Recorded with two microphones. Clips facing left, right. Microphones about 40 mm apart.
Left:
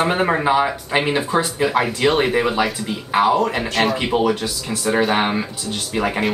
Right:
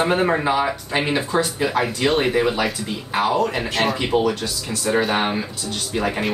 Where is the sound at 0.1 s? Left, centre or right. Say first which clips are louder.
Left 1 dB; centre.